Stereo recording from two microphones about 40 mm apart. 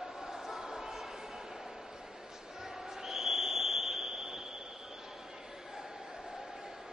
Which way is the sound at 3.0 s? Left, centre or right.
Centre.